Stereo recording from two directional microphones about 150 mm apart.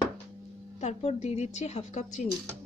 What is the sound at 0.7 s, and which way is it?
A woman's voice, 50° left (ahead or behind).